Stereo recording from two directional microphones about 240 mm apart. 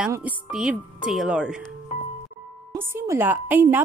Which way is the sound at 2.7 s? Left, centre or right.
Centre.